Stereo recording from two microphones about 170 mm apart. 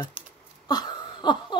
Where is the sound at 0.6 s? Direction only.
25° left (ahead or behind).